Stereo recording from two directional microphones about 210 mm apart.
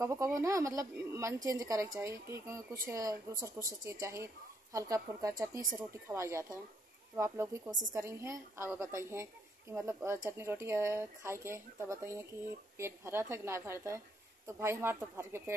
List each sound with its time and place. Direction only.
0.0 s a woman's voice: 15° right (ahead or behind)